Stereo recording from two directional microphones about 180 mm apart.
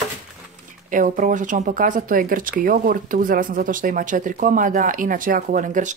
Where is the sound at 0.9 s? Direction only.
45° right (ahead or behind).